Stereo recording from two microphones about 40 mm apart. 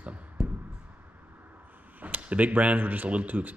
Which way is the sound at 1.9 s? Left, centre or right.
Right.